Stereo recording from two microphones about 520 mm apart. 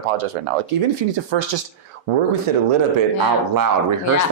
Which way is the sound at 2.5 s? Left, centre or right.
Right.